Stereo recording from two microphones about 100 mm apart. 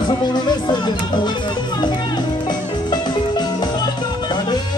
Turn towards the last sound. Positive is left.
turn(degrees=45)  # may be behind; listen again after turning